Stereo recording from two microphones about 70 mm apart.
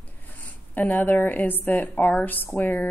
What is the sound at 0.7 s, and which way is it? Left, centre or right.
Speech, left.